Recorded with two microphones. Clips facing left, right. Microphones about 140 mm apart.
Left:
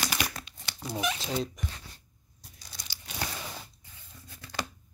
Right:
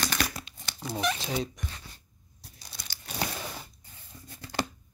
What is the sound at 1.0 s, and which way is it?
Fowl, centre (ahead or behind).